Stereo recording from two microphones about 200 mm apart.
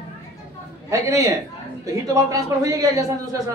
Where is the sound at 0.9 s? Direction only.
15° right (ahead or behind).